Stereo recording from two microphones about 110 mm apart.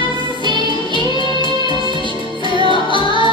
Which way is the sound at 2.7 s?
50° left (ahead or behind).